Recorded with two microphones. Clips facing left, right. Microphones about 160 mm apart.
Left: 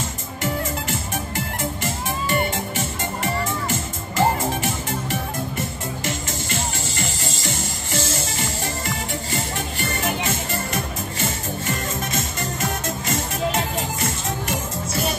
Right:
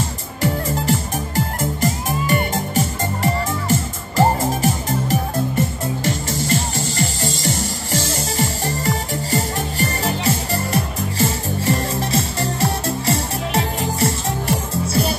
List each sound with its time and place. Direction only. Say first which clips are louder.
0.4 s music: right 4 dB; 35° right (ahead or behind)